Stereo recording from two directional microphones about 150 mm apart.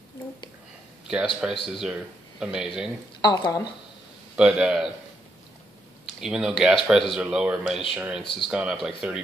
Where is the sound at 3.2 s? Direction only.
30° left (ahead or behind).